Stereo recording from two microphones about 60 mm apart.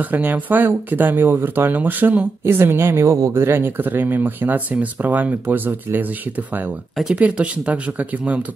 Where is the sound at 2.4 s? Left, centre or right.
Right.